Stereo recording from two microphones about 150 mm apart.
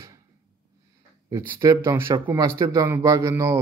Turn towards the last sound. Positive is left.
turn(degrees=-20)  # may be behind; listen again after turning